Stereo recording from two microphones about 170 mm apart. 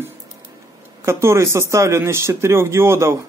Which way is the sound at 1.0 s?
15° right (ahead or behind).